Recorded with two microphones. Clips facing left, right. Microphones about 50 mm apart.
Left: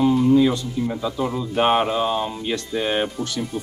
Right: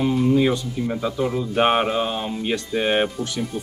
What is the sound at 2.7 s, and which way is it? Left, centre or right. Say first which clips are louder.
Speech: right 2 dB; right.